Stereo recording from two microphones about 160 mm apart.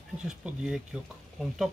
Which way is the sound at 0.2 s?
5° right (ahead or behind).